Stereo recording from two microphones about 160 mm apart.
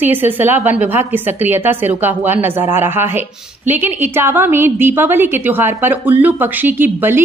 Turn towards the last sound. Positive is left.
turn(degrees=-15)  # may be behind; listen again after turning